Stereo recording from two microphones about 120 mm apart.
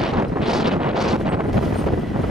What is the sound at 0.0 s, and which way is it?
Wind noise, centre (ahead or behind).